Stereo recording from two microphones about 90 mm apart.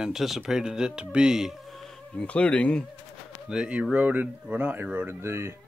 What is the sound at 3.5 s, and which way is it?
Speech, 10° right (ahead or behind).